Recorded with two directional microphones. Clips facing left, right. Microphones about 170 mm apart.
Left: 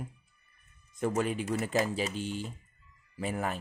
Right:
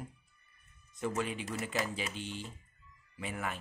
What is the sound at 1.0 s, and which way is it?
Speech, 45° left (ahead or behind).